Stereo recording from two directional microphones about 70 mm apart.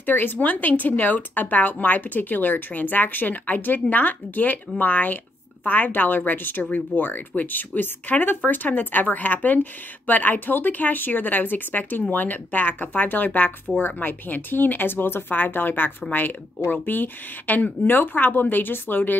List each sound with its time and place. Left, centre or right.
0.0 s speech: left